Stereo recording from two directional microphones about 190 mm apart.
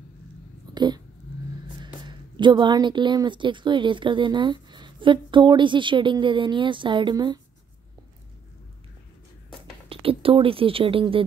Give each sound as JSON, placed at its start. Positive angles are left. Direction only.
{"t": 0.7, "sound": "a woman's voice", "side_deg": -20}
{"t": 9.8, "sound": "speech", "side_deg": -30}